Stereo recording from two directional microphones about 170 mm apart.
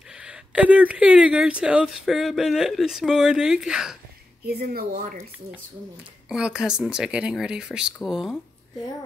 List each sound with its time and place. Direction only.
0.2 s speech: 5° right (ahead or behind)
4.5 s a woman's voice: 65° right (ahead or behind)
6.2 s speech: 5° right (ahead or behind)